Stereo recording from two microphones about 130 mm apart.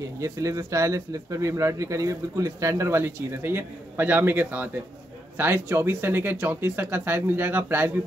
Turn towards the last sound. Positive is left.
turn(degrees=-15)  # may be behind; listen again after turning